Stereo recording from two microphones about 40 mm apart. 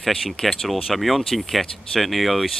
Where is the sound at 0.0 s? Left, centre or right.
Centre.